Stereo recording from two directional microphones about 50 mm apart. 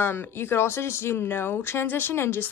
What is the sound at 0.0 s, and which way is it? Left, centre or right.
Speech, left.